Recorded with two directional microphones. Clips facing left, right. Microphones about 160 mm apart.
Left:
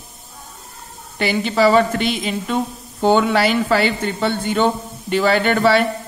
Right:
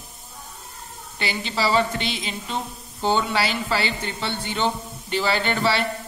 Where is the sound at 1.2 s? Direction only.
50° left (ahead or behind).